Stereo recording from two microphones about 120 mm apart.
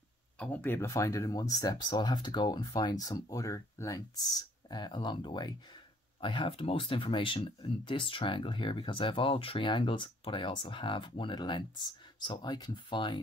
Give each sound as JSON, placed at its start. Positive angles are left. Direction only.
{"t": 0.4, "sound": "speech", "side_deg": 15}